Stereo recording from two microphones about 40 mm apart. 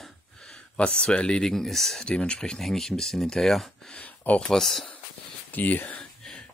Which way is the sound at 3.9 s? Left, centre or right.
Left.